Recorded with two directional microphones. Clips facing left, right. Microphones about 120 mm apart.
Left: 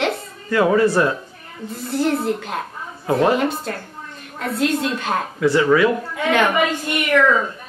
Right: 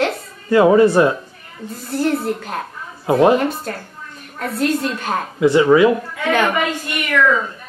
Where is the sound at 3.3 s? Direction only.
Centre (ahead or behind).